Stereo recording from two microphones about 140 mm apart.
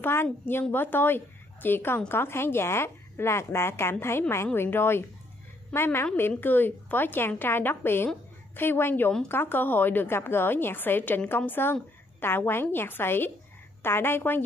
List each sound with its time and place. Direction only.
0.0 s a woman's voice: 15° left (ahead or behind)